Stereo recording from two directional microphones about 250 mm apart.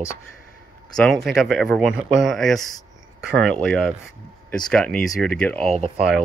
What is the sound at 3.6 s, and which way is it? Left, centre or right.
Speech, centre.